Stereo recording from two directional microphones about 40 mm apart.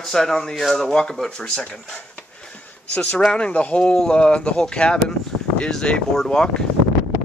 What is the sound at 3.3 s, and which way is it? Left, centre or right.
Speech, left.